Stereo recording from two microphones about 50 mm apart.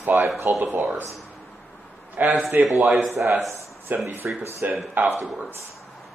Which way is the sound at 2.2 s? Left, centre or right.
Right.